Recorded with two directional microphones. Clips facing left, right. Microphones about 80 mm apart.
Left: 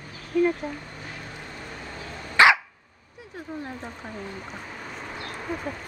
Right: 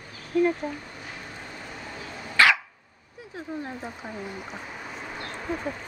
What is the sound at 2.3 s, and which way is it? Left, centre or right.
Dog, left.